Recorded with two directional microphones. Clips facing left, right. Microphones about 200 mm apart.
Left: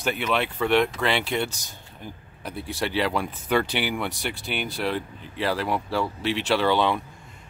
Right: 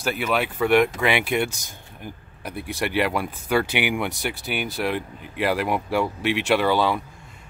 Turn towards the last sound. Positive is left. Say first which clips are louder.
# right 2 dB
turn(degrees=-10)  # may be behind; listen again after turning